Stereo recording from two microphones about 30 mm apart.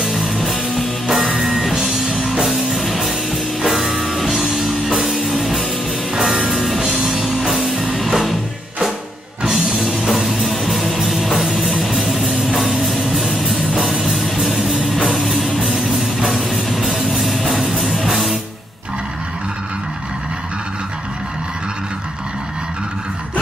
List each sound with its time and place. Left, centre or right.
0.1 s music: centre
7.0 s music: centre
7.8 s music: centre
10.0 s music: centre
15.0 s music: centre
16.7 s music: centre